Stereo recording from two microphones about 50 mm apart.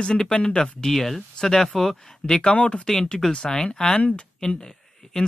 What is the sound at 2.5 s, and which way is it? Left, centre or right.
Speech, left.